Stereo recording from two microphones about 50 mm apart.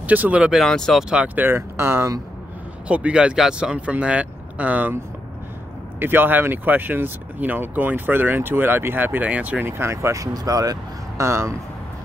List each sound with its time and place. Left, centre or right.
0.0 s speech: right
0.7 s speech: centre
1.1 s speech: right
1.4 s speech: right
2.9 s speech: right
5.9 s speech: right
9.3 s speech: right
9.6 s speech: right
11.1 s speech: right